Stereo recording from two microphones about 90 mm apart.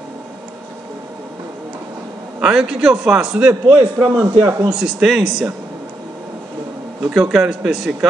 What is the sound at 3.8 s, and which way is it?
Speech, 55° right (ahead or behind).